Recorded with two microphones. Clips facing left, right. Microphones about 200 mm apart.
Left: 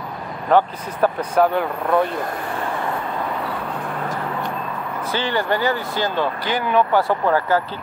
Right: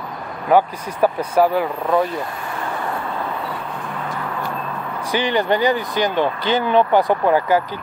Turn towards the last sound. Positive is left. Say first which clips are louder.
# right 2 dB
turn(degrees=-15)  # may be behind; listen again after turning